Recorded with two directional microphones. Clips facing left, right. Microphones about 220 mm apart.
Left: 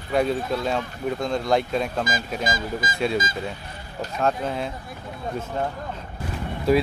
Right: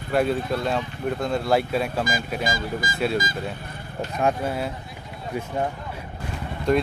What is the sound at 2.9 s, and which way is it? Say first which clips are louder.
Speech: even; 5° right (ahead or behind).